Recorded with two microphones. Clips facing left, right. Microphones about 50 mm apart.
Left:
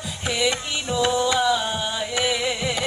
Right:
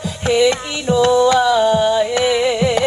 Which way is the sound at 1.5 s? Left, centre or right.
Right.